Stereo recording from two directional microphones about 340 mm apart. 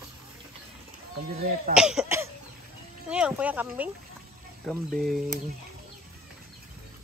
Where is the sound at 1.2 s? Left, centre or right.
Right.